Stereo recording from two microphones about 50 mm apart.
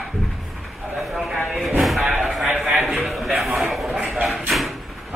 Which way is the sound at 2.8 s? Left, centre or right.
Centre.